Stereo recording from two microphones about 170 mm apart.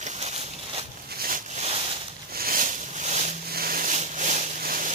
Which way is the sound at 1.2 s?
55° right (ahead or behind).